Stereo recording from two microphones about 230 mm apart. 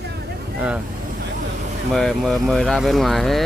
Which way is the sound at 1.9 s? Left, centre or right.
Centre.